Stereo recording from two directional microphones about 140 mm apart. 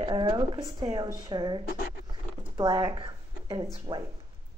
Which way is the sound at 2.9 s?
35° right (ahead or behind).